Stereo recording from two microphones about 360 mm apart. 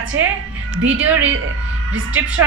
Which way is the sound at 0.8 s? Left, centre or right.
Centre.